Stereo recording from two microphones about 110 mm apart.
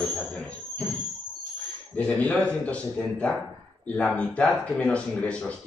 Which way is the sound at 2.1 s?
10° left (ahead or behind).